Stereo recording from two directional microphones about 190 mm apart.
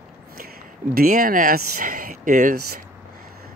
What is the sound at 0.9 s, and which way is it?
Speech, 50° right (ahead or behind).